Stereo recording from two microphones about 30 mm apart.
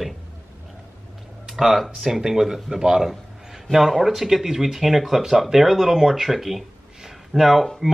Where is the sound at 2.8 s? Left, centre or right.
Right.